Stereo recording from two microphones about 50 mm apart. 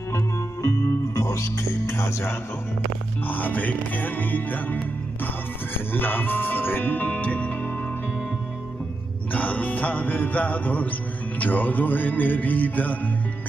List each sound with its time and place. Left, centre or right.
0.1 s music: left
1.9 s music: left
3.3 s music: left
5.9 s music: left
9.3 s music: left